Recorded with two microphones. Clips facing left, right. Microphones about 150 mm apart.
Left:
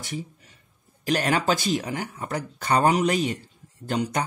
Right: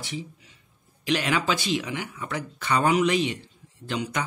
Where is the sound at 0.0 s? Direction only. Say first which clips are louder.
Left 1 dB; 50° left (ahead or behind).